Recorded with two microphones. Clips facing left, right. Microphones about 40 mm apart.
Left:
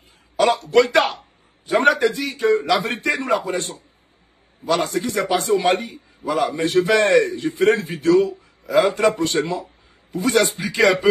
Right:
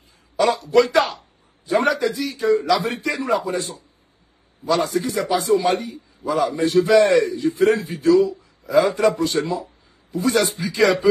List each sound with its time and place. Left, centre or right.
0.4 s a man's voice: left